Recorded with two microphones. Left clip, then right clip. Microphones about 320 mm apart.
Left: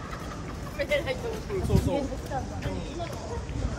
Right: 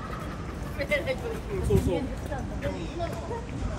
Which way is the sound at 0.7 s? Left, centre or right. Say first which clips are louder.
Even; centre.